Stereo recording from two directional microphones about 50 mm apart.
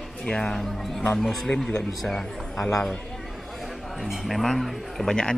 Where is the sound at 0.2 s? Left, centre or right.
Centre.